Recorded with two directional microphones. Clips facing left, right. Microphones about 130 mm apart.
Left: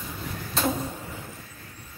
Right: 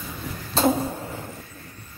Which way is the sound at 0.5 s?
35° right (ahead or behind).